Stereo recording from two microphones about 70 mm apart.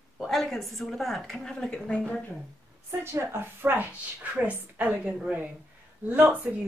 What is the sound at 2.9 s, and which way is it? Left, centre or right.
A woman's voice, right.